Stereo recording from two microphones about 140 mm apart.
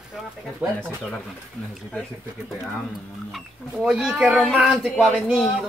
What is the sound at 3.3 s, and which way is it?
Speech, centre (ahead or behind).